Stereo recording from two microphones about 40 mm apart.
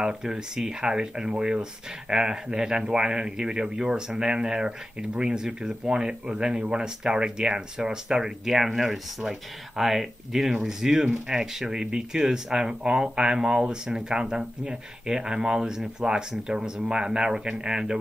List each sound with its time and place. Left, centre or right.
0.0 s speech: centre